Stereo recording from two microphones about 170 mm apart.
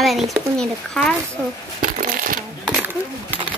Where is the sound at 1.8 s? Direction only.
50° right (ahead or behind).